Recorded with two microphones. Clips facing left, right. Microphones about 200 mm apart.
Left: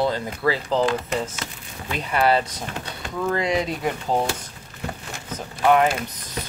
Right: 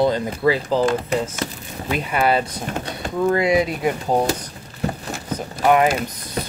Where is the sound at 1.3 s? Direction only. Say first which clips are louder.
Right 7 dB; 50° right (ahead or behind).